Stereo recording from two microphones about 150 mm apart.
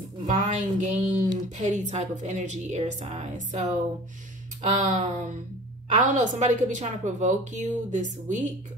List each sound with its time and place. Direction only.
0.3 s a woman's voice: 55° right (ahead or behind)